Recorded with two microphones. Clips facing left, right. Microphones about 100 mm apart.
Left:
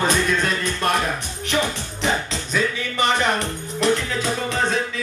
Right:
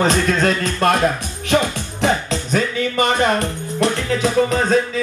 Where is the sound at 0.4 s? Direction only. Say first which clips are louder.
Right 6 dB; 45° right (ahead or behind).